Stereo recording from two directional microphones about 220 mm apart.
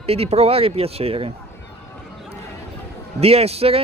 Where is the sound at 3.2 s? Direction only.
25° right (ahead or behind).